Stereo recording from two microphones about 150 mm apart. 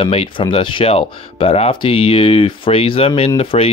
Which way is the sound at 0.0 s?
40° left (ahead or behind).